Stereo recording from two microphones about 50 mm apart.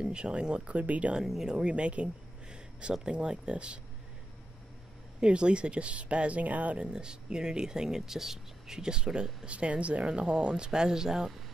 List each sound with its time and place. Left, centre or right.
0.0 s speech: centre
1.2 s speech: centre
1.5 s speech: centre
5.2 s speech: centre
6.9 s speech: centre